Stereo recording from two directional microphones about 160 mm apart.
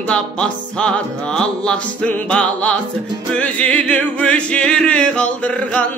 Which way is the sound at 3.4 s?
10° left (ahead or behind).